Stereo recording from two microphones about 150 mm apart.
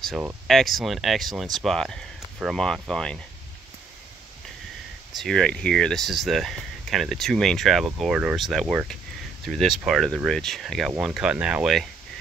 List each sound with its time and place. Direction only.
0.5 s speech: centre (ahead or behind)
5.1 s speech: 5° left (ahead or behind)